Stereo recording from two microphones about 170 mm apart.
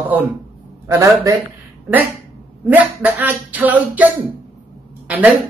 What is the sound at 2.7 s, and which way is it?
Speech, 10° right (ahead or behind).